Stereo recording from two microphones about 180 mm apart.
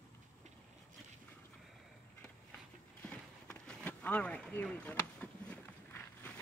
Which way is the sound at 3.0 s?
5° left (ahead or behind).